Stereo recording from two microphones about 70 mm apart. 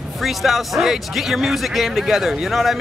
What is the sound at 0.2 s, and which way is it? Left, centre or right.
A man's voice, centre.